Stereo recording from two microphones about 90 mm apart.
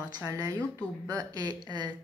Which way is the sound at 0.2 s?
35° right (ahead or behind).